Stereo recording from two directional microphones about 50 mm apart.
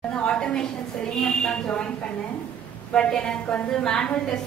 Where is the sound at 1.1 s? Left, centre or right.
Centre.